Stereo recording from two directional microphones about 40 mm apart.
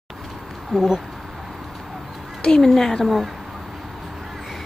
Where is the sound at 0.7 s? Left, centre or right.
Centre.